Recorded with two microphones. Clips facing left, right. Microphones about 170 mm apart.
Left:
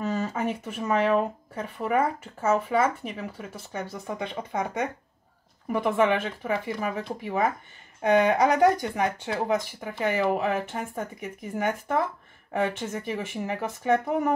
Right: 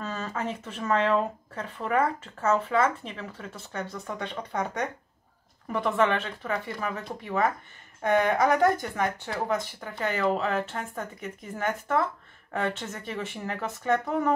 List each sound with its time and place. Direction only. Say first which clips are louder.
0.0 s speech: left 5 dB; 15° left (ahead or behind)